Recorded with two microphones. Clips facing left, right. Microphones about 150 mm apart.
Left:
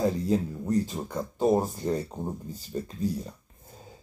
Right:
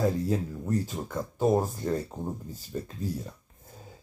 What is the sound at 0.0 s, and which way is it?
Speech, 20° left (ahead or behind).